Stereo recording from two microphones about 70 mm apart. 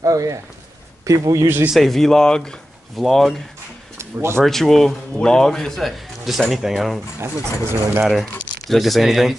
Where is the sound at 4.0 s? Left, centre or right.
Right.